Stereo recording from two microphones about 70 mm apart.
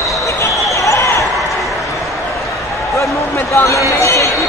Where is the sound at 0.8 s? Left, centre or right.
Left.